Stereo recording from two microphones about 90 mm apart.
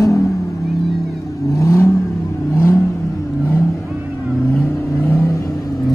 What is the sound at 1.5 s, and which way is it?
Vehicle, 35° left (ahead or behind).